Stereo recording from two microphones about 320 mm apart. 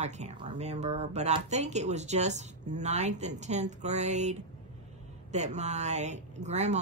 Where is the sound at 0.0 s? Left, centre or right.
Right.